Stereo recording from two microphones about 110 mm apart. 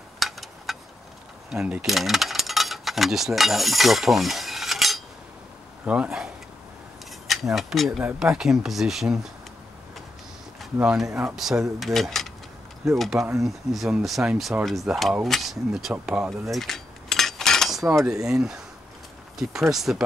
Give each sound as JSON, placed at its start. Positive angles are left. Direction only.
{"t": 0.2, "sound": "a sound", "side_deg": 0}
{"t": 1.5, "sound": "speech", "side_deg": -5}
{"t": 10.8, "sound": "speech", "side_deg": -5}
{"t": 11.1, "sound": "speech", "side_deg": -25}
{"t": 11.3, "sound": "speech", "side_deg": -5}
{"t": 15.9, "sound": "a sound", "side_deg": -5}
{"t": 18.2, "sound": "speech", "side_deg": -5}
{"t": 19.7, "sound": "speech", "side_deg": 0}